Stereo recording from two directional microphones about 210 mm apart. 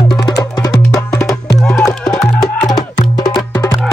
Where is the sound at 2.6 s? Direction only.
20° left (ahead or behind).